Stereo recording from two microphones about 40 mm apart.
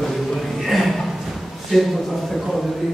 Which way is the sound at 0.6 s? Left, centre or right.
Centre.